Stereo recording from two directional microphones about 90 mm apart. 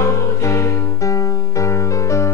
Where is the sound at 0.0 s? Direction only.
35° left (ahead or behind).